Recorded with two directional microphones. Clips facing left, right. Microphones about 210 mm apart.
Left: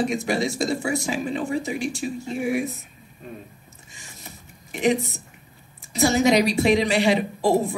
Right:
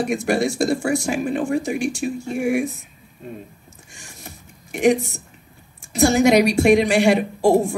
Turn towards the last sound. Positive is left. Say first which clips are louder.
# right 4 dB
turn(degrees=-50)  # may be behind; listen again after turning